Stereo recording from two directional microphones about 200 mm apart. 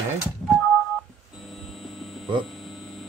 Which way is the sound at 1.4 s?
Centre (ahead or behind).